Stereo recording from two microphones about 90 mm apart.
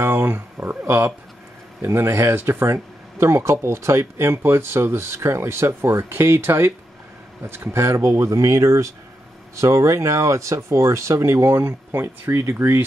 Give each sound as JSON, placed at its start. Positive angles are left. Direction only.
{"t": 0.0, "sound": "speech", "side_deg": -25}
{"t": 7.7, "sound": "speech", "side_deg": -30}